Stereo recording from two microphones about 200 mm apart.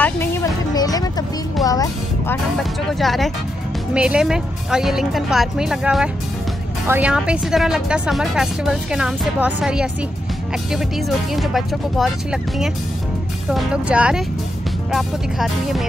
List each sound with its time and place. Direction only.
0.0 s music: 10° left (ahead or behind)
2.9 s speech: centre (ahead or behind)